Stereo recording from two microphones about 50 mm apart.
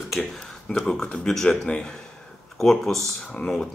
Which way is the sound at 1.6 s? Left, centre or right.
Centre.